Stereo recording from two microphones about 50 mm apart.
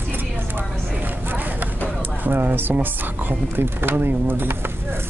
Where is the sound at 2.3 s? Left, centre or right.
Right.